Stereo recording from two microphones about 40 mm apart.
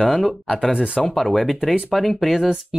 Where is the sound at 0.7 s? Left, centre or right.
Right.